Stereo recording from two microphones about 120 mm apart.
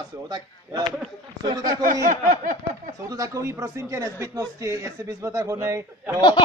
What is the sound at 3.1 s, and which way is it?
A man's voice, 25° right (ahead or behind).